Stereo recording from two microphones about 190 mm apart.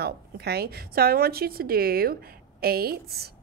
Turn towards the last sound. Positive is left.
turn(degrees=-55)  # may be behind; listen again after turning